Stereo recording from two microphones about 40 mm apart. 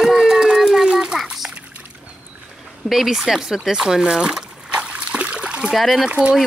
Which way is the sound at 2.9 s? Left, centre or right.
Centre.